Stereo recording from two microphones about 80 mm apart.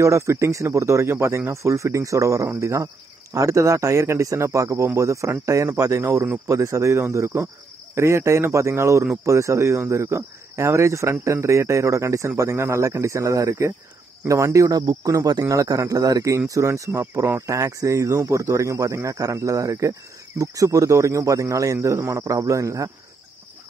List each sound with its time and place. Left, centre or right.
0.0 s a man's voice: right